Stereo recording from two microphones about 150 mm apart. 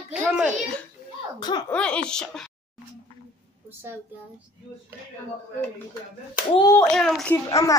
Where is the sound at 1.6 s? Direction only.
10° left (ahead or behind).